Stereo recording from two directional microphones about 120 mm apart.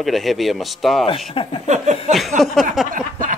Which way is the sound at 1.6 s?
80° right.